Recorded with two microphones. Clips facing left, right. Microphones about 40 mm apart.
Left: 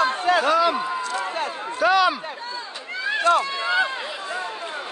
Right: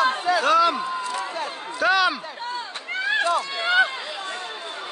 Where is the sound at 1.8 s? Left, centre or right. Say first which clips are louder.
Left 2 dB; centre.